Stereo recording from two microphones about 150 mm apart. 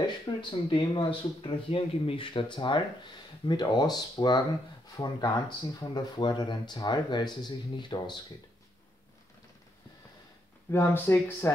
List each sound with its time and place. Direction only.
0.0 s speech: 30° left (ahead or behind)
10.7 s speech: 15° left (ahead or behind)